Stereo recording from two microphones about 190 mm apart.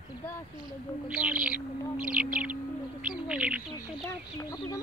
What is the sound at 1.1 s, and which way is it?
Owl, 5° right (ahead or behind).